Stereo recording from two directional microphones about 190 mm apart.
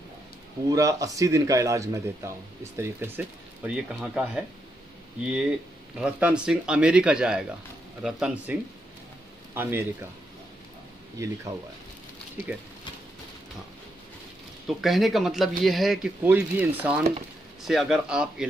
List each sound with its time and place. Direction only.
0.7 s a man's voice: 15° right (ahead or behind)
5.9 s speech: 5° right (ahead or behind)
11.5 s speech: 35° right (ahead or behind)
14.7 s speech: centre (ahead or behind)